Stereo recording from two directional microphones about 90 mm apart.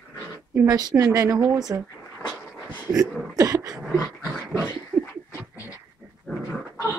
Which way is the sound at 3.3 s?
40° right (ahead or behind).